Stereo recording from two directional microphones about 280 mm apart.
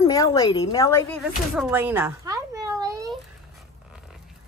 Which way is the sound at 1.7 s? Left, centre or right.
Centre.